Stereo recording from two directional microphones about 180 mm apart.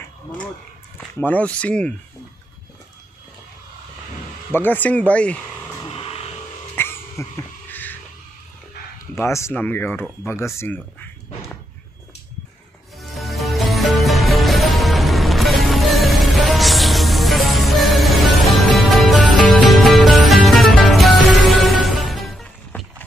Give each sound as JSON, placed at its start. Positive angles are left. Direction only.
{"t": 1.2, "sound": "speech", "side_deg": 5}
{"t": 4.5, "sound": "speech", "side_deg": 10}
{"t": 5.9, "sound": "vehicle", "side_deg": 30}
{"t": 6.7, "sound": "a sound", "side_deg": 10}
{"t": 7.7, "sound": "music", "side_deg": 10}
{"t": 9.2, "sound": "speech", "side_deg": 15}
{"t": 13.2, "sound": "music", "side_deg": 0}